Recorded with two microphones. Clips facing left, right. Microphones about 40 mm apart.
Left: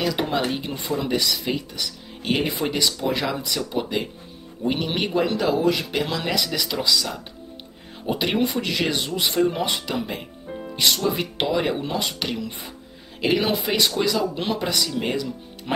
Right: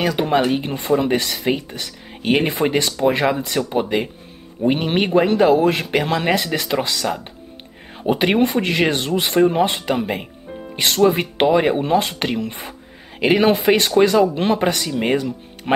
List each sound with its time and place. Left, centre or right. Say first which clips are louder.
0.0 s speech: right 6 dB; right
9.5 s speech: right 7 dB; right